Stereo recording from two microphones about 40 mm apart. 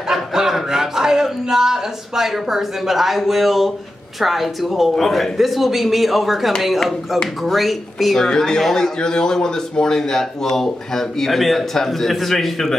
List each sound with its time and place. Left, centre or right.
0.1 s a sound: centre
0.7 s a man's voice: centre
8.2 s speech: centre